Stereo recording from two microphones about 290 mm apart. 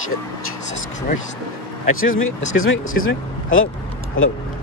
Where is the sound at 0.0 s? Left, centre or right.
Left.